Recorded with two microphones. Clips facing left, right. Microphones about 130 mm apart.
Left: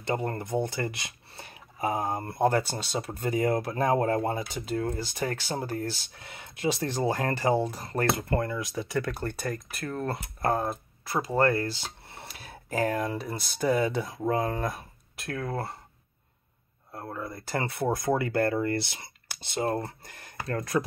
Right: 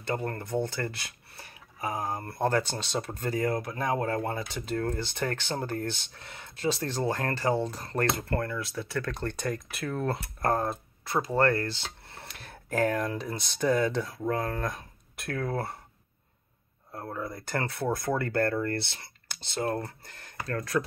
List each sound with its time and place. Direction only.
0.0 s speech: 20° left (ahead or behind)
15.1 s speech: centre (ahead or behind)
16.9 s speech: 5° left (ahead or behind)
17.6 s speech: 15° left (ahead or behind)